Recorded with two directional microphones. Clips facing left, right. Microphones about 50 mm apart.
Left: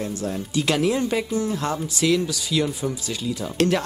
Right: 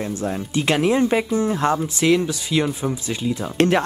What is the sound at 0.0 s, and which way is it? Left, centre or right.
Speech, right.